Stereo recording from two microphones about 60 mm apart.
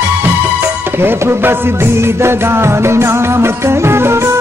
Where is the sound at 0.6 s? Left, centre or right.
Right.